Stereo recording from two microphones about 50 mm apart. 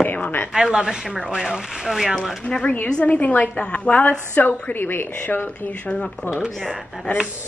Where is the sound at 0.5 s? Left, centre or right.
Centre.